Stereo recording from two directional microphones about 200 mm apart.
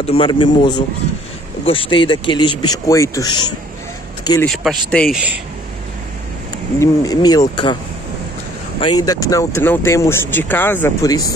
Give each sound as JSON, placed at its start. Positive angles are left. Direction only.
{"t": 0.0, "sound": "speech", "side_deg": 30}
{"t": 4.5, "sound": "speech", "side_deg": 0}
{"t": 6.8, "sound": "speech", "side_deg": 20}
{"t": 8.8, "sound": "speech", "side_deg": 20}